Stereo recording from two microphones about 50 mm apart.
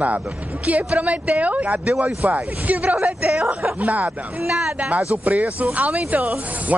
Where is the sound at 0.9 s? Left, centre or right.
Right.